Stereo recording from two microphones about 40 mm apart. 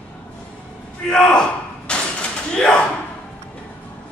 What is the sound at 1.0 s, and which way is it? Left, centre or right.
Slam, centre.